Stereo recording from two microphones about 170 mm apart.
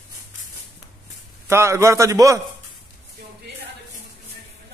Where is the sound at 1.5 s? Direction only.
15° right (ahead or behind).